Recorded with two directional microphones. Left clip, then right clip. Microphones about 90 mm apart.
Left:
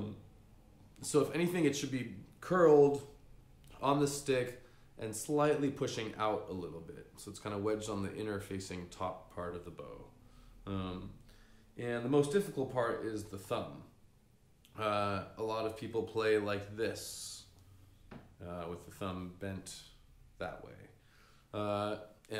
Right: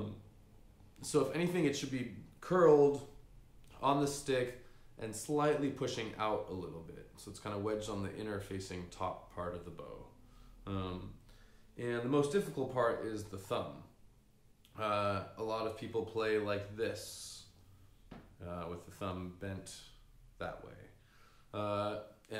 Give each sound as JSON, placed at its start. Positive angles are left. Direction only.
{"t": 0.9, "sound": "speech", "side_deg": 30}
{"t": 14.7, "sound": "speech", "side_deg": 35}
{"t": 18.4, "sound": "speech", "side_deg": 25}